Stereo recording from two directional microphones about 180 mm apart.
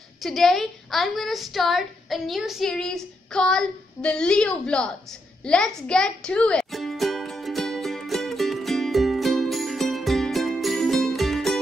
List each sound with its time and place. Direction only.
0.2 s a woman's voice: centre (ahead or behind)
5.4 s music: 5° left (ahead or behind)